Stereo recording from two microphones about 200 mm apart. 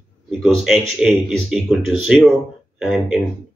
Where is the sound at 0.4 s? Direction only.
Centre (ahead or behind).